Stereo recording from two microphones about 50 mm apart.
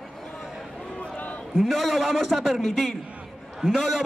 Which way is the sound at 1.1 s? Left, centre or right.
Left.